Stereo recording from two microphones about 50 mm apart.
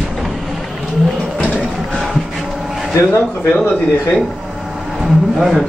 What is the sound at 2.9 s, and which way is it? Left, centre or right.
Speech, left.